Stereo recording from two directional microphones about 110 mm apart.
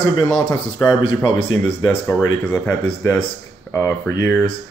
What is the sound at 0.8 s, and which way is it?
Speech, 30° left (ahead or behind).